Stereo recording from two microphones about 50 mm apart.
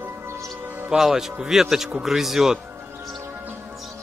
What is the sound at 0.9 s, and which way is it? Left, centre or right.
Speech, centre.